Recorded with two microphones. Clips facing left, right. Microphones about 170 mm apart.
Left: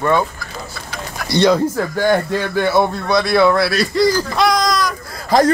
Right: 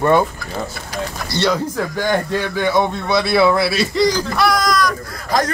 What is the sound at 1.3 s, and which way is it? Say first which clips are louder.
A man's voice: left 6 dB; 15° left (ahead or behind).